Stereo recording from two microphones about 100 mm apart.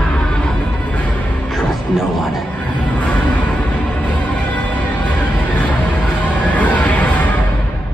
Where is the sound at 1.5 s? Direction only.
Centre (ahead or behind).